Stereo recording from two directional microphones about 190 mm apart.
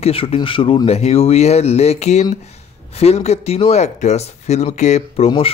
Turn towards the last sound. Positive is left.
turn(degrees=30)  # may be behind; listen again after turning